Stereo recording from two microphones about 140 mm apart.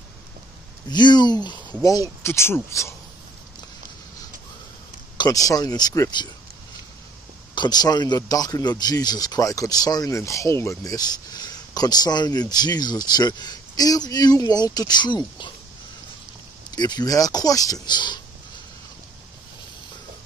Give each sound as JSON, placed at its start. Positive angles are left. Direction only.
{"t": 0.8, "sound": "speech", "side_deg": 30}
{"t": 5.1, "sound": "speech", "side_deg": 25}
{"t": 7.5, "sound": "speech", "side_deg": 30}
{"t": 16.7, "sound": "speech", "side_deg": 30}